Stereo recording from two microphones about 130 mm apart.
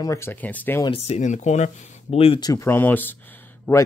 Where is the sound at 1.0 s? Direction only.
60° left (ahead or behind).